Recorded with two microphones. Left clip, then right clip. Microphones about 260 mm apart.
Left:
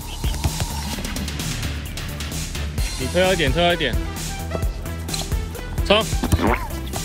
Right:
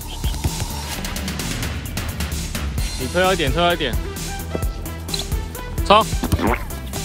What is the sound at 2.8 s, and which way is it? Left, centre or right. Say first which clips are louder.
Music: even; centre.